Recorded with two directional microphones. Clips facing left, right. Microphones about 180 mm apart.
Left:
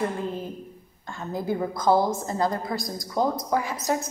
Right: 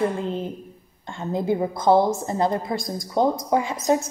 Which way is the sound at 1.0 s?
30° right (ahead or behind).